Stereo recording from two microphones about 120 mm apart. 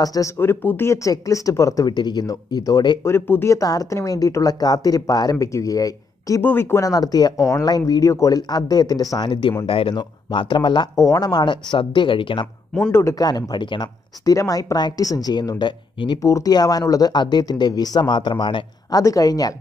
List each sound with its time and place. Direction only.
0.0 s speech: 30° left (ahead or behind)
0.4 s speech: 20° left (ahead or behind); by 3.0 s 35° left (ahead or behind)
3.0 s speech: 20° left (ahead or behind)
6.4 s speech: 20° left (ahead or behind); by 10.9 s 40° left (ahead or behind)
11.0 s speech: 30° left (ahead or behind)
16.2 s speech: 25° left (ahead or behind)